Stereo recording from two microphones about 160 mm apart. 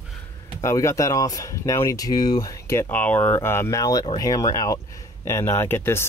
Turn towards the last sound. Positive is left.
turn(degrees=15)  # may be behind; listen again after turning